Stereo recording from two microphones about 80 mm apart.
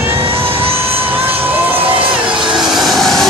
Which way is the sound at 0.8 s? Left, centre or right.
Right.